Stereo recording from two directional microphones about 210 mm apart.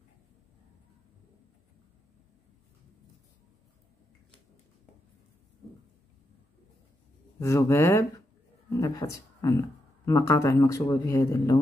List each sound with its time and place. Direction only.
7.3 s speech: 15° left (ahead or behind)